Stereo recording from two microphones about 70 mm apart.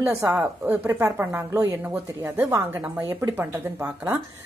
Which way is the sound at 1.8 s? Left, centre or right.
Right.